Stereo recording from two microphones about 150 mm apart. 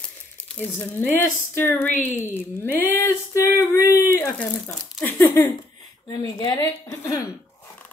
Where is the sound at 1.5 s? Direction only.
15° left (ahead or behind).